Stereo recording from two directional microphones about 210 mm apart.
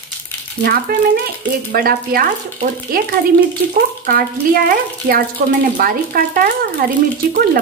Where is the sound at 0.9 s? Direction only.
45° right (ahead or behind).